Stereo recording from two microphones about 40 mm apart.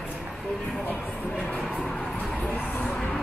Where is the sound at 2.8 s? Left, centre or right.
Left.